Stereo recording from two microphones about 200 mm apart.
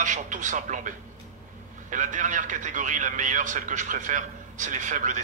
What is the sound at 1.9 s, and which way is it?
A man's voice, 40° right (ahead or behind).